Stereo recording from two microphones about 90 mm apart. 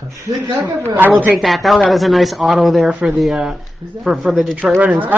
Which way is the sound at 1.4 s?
Centre (ahead or behind).